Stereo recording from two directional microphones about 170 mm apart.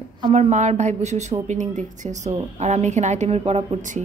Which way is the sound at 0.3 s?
40° right (ahead or behind).